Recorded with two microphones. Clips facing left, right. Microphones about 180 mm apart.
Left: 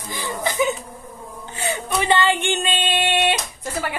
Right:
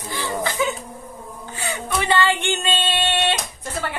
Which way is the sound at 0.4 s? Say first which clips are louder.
Left 3 dB; 15° left (ahead or behind).